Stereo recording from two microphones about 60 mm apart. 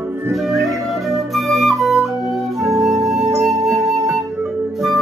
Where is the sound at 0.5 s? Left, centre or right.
Centre.